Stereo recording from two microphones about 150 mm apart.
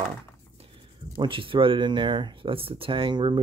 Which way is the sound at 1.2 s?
35° right (ahead or behind).